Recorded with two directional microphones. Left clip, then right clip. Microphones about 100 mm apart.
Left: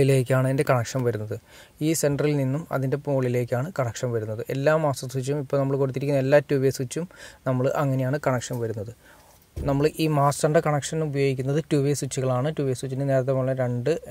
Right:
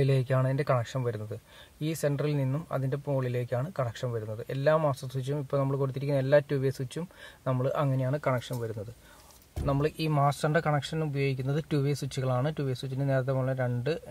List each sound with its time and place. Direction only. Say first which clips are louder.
0.0 s speech: left 7 dB; 30° left (ahead or behind)